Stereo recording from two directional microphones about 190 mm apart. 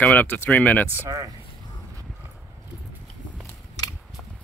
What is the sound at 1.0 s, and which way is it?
Speech, 20° right (ahead or behind).